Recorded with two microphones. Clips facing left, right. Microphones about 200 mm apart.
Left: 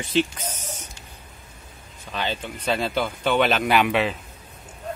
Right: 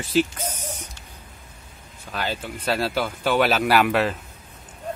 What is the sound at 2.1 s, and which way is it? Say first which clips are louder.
A man's voice: even; 5° right (ahead or behind).